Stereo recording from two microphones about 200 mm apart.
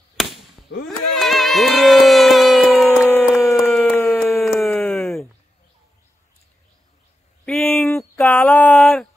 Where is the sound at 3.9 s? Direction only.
15° left (ahead or behind).